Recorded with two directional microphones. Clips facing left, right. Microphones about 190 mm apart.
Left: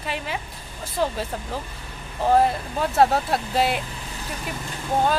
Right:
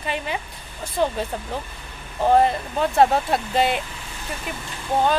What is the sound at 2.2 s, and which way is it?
Speech, centre (ahead or behind).